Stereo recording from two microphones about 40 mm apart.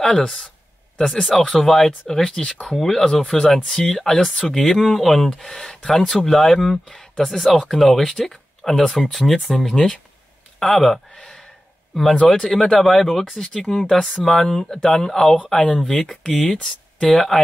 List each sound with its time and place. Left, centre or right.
0.0 s speech: centre
1.5 s speech: centre